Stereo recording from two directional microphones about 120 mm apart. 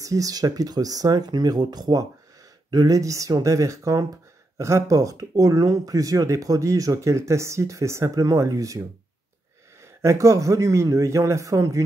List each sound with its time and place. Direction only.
0.0 s speech: 30° right (ahead or behind)